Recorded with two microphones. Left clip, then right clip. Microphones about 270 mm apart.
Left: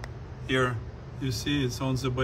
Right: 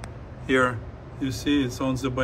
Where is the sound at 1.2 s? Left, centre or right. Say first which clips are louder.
Right 5 dB; centre.